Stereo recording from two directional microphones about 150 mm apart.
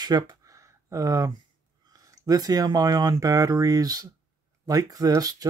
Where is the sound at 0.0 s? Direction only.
25° right (ahead or behind).